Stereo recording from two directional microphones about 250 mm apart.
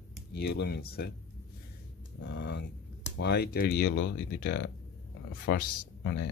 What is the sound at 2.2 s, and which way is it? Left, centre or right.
Speech, left.